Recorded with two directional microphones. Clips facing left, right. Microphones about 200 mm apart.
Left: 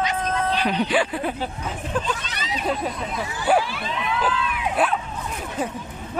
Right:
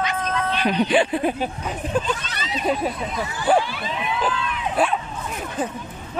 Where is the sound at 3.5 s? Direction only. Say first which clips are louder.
Right 1 dB; 5° left (ahead or behind).